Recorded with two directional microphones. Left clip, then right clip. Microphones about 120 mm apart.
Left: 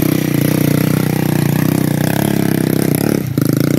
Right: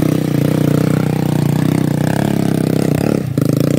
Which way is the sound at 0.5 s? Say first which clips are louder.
Right 2 dB; centre (ahead or behind).